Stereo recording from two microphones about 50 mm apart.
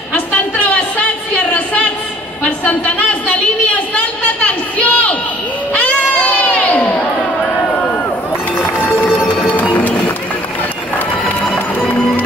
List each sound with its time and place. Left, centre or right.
1.3 s a sound: left
8.5 s run: left
9.4 s music: left